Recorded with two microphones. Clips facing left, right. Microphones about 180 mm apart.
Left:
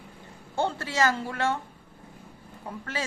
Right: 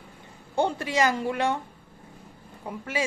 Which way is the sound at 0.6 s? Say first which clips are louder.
Right 2 dB; 15° right (ahead or behind).